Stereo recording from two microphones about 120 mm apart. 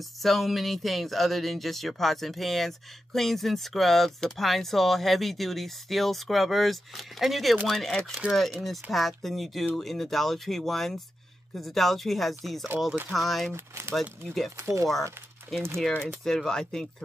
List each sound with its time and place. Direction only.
0.2 s speech: centre (ahead or behind)
13.8 s speech: 20° right (ahead or behind)
14.2 s speech: centre (ahead or behind)
14.6 s speech: 25° right (ahead or behind)
15.5 s speech: centre (ahead or behind)